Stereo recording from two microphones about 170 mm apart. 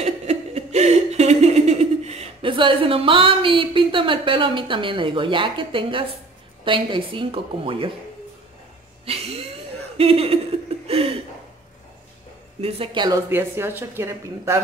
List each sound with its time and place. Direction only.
0.0 s laughter: 40° right (ahead or behind)
6.6 s a woman's voice: 30° right (ahead or behind)
9.0 s a sound: 35° right (ahead or behind)
9.9 s a woman's voice: 35° right (ahead or behind)
10.9 s a sound: 35° right (ahead or behind)
12.5 s a woman's voice: 35° right (ahead or behind)
13.3 s speech: 15° right (ahead or behind)